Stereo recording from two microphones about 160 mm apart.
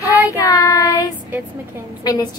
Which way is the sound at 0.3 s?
20° left (ahead or behind).